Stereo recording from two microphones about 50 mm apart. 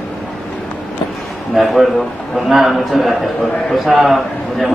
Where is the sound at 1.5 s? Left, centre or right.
Centre.